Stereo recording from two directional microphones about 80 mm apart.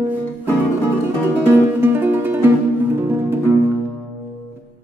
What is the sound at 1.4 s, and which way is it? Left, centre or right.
Music, right.